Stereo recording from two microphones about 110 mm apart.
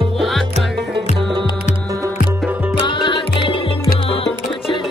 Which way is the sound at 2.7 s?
45° left (ahead or behind).